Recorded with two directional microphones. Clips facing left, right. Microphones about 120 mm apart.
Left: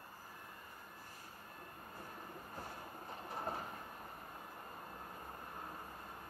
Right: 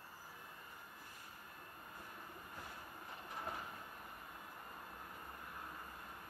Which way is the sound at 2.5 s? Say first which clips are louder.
Left 5 dB; 35° left (ahead or behind).